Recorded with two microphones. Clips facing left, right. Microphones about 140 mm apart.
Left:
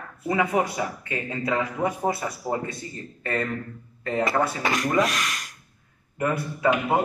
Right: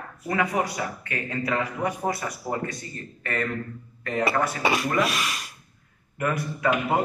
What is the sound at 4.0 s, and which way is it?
Speech, 25° left (ahead or behind).